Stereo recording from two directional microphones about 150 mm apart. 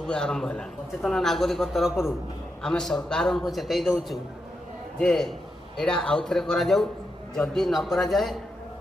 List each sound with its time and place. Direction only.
0.0 s a man's voice: 5° left (ahead or behind)